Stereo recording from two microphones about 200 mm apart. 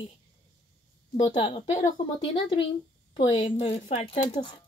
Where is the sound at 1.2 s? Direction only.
30° left (ahead or behind).